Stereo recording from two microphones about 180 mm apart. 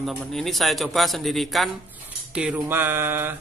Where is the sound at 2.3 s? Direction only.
5° right (ahead or behind).